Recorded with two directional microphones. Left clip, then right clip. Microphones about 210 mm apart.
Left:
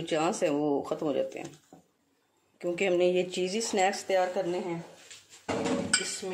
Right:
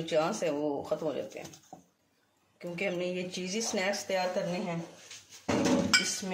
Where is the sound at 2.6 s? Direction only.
50° left (ahead or behind).